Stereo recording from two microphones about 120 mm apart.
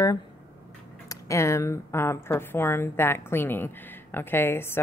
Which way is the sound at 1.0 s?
25° left (ahead or behind).